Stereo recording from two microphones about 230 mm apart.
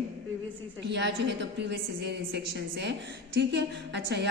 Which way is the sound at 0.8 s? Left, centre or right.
Right.